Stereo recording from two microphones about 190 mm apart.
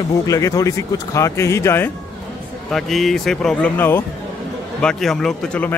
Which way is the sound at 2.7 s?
Centre (ahead or behind).